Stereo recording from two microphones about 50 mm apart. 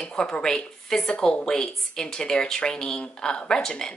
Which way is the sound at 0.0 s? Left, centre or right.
Centre.